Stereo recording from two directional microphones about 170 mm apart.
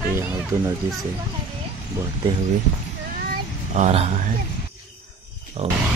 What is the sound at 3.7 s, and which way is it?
Speech, 40° right (ahead or behind).